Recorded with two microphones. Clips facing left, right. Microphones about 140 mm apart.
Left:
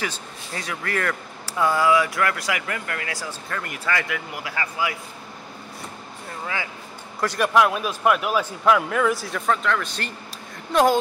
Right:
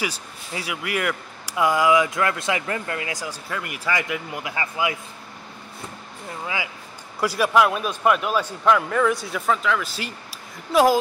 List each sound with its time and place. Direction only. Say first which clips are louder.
0.0 s speech: right 1 dB; 10° right (ahead or behind)
6.4 s a man's voice: even; 15° right (ahead or behind)